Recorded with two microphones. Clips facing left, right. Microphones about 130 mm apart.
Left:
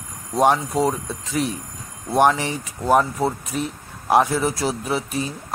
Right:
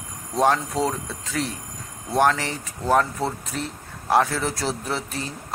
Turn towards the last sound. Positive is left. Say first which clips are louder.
# left 5 dB
turn(degrees=10)  # may be behind; listen again after turning